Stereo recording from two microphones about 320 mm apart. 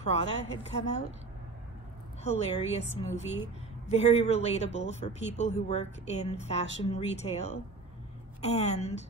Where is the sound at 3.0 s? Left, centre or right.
Right.